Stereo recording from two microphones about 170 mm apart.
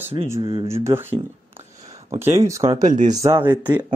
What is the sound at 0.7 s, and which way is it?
Speech, 15° right (ahead or behind).